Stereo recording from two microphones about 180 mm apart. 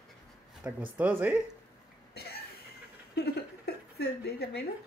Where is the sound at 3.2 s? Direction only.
60° left (ahead or behind).